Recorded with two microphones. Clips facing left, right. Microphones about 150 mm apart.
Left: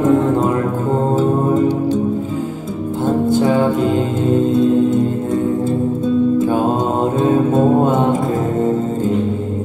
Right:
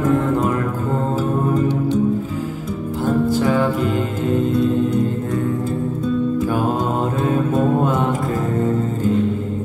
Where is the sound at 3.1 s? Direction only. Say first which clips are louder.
Left 3 dB; 20° left (ahead or behind).